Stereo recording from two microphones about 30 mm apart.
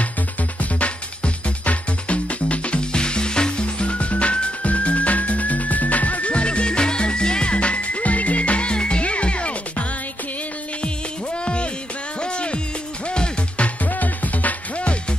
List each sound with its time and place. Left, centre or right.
0.6 s music: left
2.8 s music: left
7.5 s music: left
11.4 s music: left
13.8 s music: left